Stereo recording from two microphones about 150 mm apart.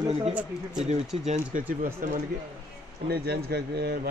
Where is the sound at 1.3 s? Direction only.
55° right (ahead or behind).